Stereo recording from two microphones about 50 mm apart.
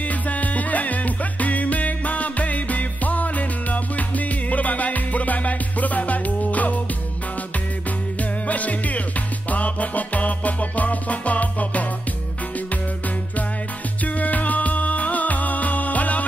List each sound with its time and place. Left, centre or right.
0.1 s music: left
8.2 s music: left
14.0 s music: left